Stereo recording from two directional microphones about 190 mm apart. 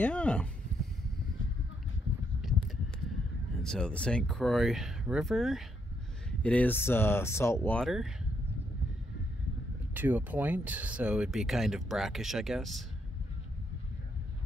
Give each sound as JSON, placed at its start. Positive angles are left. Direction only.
{"t": 0.0, "sound": "speech", "side_deg": 5}
{"t": 3.6, "sound": "speech", "side_deg": 5}
{"t": 9.9, "sound": "speech", "side_deg": -10}